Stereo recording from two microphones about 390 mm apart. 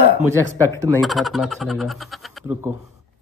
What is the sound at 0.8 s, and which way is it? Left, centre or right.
Speech, centre.